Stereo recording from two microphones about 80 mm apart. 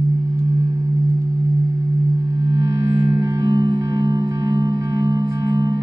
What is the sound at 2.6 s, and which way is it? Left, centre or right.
Music, right.